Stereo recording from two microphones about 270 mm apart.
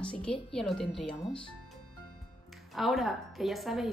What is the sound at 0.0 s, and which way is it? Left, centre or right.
A woman's voice, centre.